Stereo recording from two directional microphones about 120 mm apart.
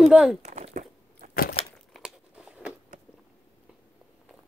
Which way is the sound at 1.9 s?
5° right (ahead or behind).